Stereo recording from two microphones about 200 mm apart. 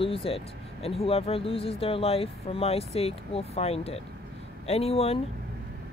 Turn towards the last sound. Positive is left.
turn(degrees=30)  # may be behind; listen again after turning